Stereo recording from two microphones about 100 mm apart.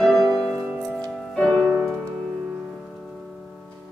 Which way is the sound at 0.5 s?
15° right (ahead or behind).